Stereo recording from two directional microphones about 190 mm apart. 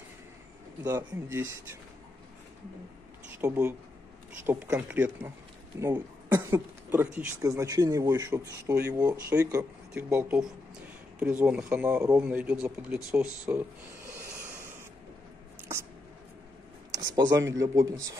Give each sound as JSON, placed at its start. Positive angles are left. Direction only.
{"t": 0.8, "sound": "speech", "side_deg": -15}
{"t": 3.4, "sound": "speech", "side_deg": -15}
{"t": 16.9, "sound": "speech", "side_deg": -20}